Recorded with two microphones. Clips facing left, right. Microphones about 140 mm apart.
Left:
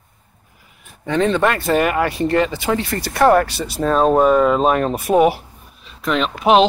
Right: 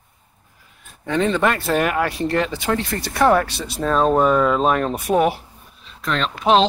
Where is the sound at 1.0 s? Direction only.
Centre (ahead or behind).